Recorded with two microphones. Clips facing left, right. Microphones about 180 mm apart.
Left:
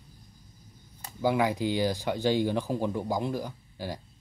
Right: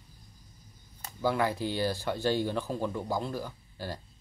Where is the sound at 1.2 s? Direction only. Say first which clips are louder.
Left 3 dB; 15° left (ahead or behind).